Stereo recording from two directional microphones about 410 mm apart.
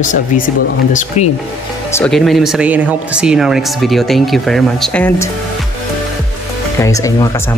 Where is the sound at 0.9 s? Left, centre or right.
Centre.